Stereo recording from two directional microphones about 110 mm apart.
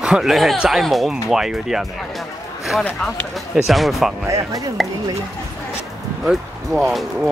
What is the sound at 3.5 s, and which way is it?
Speech, centre (ahead or behind).